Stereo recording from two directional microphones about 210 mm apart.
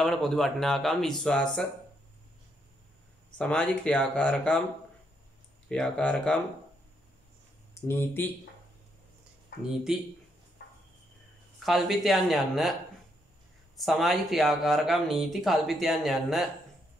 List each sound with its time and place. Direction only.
0.0 s speech: centre (ahead or behind)
3.3 s speech: 5° left (ahead or behind)
5.7 s speech: 5° left (ahead or behind)
7.9 s speech: 10° left (ahead or behind)
11.6 s speech: centre (ahead or behind)
13.7 s speech: centre (ahead or behind)